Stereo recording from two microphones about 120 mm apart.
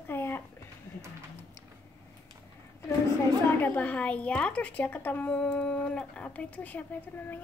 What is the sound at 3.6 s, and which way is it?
A woman's voice, 10° left (ahead or behind).